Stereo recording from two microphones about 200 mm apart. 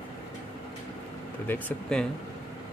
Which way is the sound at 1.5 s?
5° left (ahead or behind).